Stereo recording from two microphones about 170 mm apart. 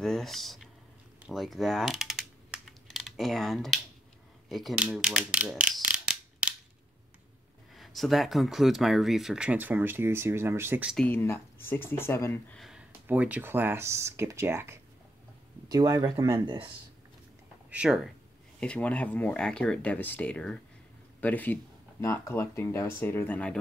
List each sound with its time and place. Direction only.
0.0 s a sound: centre (ahead or behind)
1.2 s typing: centre (ahead or behind)
4.5 s a sound: centre (ahead or behind)
7.7 s speech: centre (ahead or behind)
11.0 s speech: 10° left (ahead or behind)
12.5 s speech: 5° right (ahead or behind); by 16.7 s 30° right (ahead or behind)
17.6 s speech: 5° right (ahead or behind)